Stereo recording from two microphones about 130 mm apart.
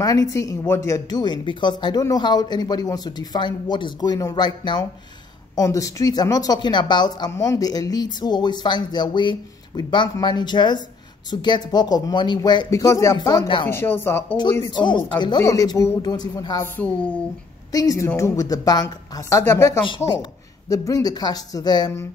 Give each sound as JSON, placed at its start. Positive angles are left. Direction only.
{"t": 0.0, "sound": "speech", "side_deg": 25}
{"t": 14.7, "sound": "speech", "side_deg": 35}
{"t": 16.7, "sound": "speech", "side_deg": 10}
{"t": 17.6, "sound": "speech", "side_deg": 25}